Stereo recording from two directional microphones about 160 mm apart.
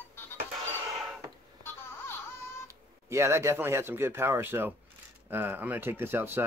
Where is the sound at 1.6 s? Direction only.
15° left (ahead or behind).